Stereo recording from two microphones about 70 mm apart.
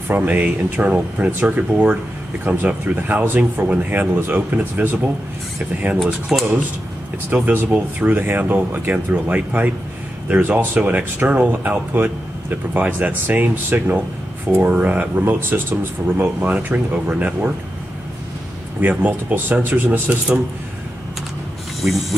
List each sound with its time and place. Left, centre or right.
0.1 s speech: right
6.3 s speech: centre
7.2 s speech: right
18.8 s speech: right